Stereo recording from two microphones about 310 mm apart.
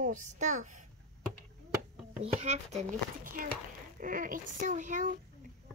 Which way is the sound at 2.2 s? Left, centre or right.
Centre.